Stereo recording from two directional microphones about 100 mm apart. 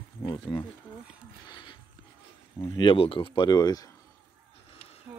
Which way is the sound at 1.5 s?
50° left (ahead or behind).